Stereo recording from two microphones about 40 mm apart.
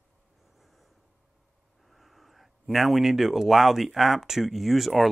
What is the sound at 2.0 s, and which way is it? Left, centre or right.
Speech, centre.